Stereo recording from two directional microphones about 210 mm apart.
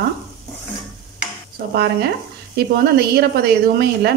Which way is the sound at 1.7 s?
50° right (ahead or behind).